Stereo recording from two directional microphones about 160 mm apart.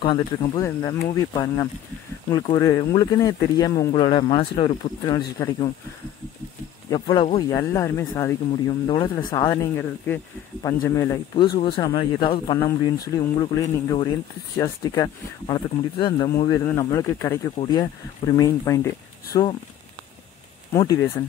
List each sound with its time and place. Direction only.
0.0 s speech: 30° left (ahead or behind)
0.7 s speech: 20° left (ahead or behind)
5.1 s speech: 20° left (ahead or behind)
6.9 s speech: 30° left (ahead or behind)
7.3 s speech: 20° left (ahead or behind)
8.8 s speech: 30° left (ahead or behind)
9.5 s speech: 15° left (ahead or behind)
20.7 s speech: 20° left (ahead or behind)